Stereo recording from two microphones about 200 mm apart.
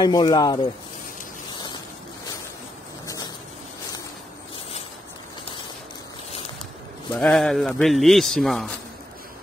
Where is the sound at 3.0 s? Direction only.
20° left (ahead or behind).